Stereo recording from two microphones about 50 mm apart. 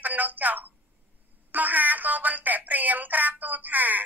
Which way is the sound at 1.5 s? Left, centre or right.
Right.